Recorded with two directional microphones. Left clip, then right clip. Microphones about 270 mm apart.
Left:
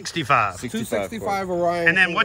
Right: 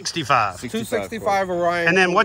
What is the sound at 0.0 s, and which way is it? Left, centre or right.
Speech, centre.